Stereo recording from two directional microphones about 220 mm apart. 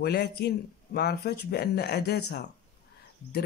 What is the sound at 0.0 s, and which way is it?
Speech, 50° left (ahead or behind).